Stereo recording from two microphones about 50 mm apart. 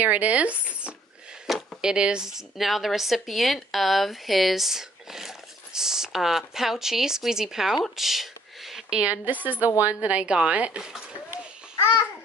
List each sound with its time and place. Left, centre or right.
0.0 s a woman's voice: right; by 7.8 s centre
7.9 s a sound: centre
9.0 s a woman's voice: right
11.8 s babbling: left